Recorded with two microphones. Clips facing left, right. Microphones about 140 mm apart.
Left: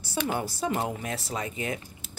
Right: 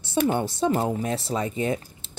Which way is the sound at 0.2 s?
30° right (ahead or behind).